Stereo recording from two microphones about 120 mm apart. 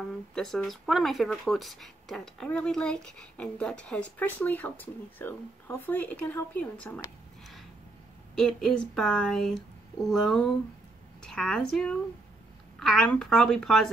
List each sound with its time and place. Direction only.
0.3 s speech: 5° left (ahead or behind)
8.4 s speech: 5° left (ahead or behind)